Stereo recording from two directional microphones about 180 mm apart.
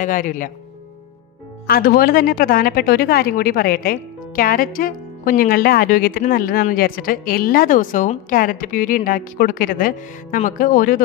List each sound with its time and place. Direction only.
0.0 s speech: 45° left (ahead or behind)
1.7 s speech: 55° left (ahead or behind)